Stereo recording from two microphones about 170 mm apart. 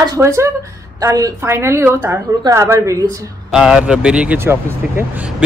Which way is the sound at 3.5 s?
5° right (ahead or behind).